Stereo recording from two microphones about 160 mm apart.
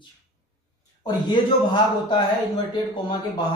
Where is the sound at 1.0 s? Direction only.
30° left (ahead or behind).